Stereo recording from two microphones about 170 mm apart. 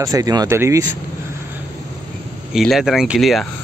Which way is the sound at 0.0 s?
20° right (ahead or behind).